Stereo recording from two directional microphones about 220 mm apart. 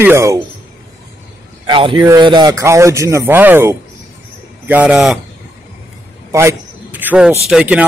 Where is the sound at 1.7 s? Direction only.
20° right (ahead or behind); by 5.2 s 5° right (ahead or behind).